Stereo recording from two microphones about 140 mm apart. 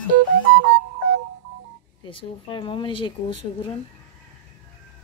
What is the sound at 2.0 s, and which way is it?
Speech, 35° left (ahead or behind).